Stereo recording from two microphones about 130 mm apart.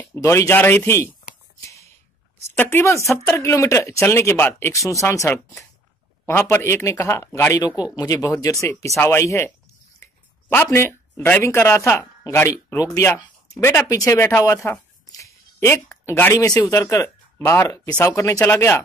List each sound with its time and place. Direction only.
0.1 s speech: 20° left (ahead or behind)
2.5 s speech: 15° left (ahead or behind)
10.5 s speech: 15° left (ahead or behind)